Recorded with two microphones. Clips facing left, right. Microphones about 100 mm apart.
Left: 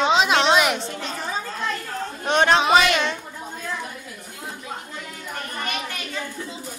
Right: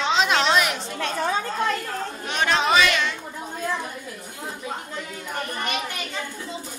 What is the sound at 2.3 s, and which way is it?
Speech, 35° left (ahead or behind).